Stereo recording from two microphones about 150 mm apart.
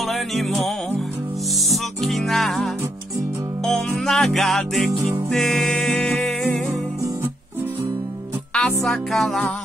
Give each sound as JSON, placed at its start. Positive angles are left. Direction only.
{"t": 0.1, "sound": "music", "side_deg": 0}
{"t": 8.5, "sound": "music", "side_deg": 5}